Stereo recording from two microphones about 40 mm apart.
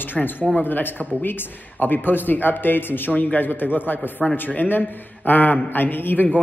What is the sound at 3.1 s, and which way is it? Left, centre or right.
Speech, left.